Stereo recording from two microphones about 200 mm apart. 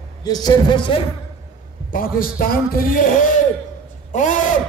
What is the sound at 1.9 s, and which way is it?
A man's voice, 45° left (ahead or behind).